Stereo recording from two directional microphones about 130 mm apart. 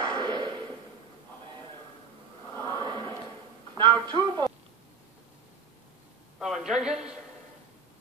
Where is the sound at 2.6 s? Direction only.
35° right (ahead or behind).